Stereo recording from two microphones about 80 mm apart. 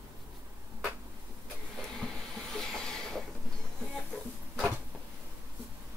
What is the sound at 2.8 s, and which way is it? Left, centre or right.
Vehicle, centre.